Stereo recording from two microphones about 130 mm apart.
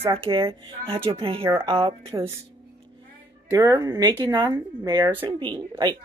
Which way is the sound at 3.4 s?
25° right (ahead or behind).